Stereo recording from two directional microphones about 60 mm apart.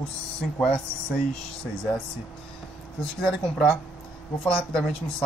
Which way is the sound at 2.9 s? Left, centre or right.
Centre.